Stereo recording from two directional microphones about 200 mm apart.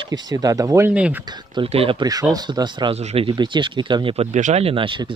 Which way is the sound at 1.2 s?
20° right (ahead or behind).